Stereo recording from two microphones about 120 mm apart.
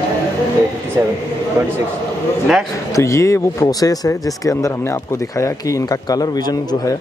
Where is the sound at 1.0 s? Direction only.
20° right (ahead or behind).